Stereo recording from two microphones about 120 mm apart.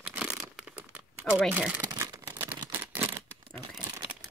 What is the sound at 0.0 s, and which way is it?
Crumpling, 10° right (ahead or behind).